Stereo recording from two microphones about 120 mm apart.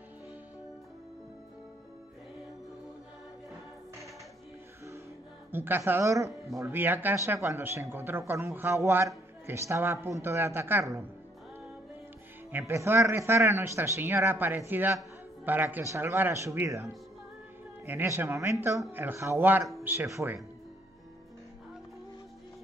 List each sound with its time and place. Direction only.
5.5 s a man's voice: 20° right (ahead or behind)
12.4 s a man's voice: 20° right (ahead or behind)